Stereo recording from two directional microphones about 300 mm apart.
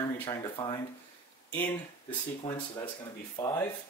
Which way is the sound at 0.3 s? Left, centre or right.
Centre.